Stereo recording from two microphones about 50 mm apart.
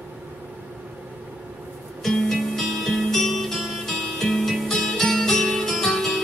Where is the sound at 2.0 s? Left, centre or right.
Centre.